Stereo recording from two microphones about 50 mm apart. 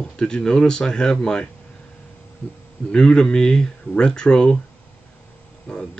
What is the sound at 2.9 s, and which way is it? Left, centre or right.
Speech, centre.